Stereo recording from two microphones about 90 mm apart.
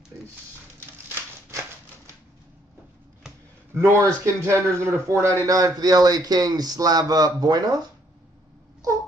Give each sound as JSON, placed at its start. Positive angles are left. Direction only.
{"t": 3.7, "sound": "a man's voice", "side_deg": -30}
{"t": 5.4, "sound": "a man's voice", "side_deg": -45}